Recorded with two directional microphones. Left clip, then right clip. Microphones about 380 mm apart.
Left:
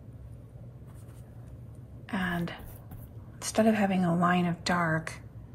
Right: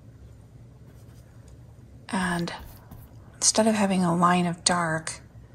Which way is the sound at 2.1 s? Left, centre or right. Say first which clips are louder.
Right 5 dB; centre.